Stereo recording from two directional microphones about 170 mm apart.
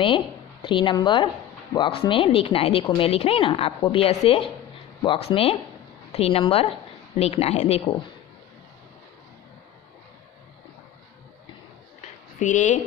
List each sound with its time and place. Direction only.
0.0 s a woman's voice: 30° left (ahead or behind)
12.4 s speech: 50° left (ahead or behind)